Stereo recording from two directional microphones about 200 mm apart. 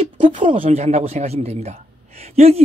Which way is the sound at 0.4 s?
25° right (ahead or behind).